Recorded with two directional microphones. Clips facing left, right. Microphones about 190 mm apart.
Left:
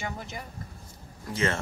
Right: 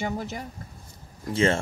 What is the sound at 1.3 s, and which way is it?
Speech, 25° right (ahead or behind).